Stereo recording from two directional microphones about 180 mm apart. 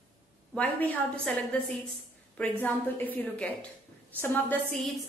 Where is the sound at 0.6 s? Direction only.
10° left (ahead or behind).